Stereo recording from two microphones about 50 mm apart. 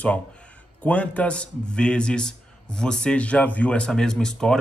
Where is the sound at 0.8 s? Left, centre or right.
Left.